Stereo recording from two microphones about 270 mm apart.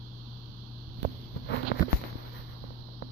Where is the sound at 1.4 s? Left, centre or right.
Left.